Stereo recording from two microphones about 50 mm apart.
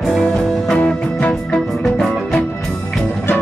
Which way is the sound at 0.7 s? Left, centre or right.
Left.